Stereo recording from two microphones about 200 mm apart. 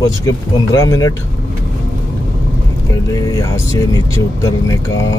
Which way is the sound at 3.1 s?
15° left (ahead or behind).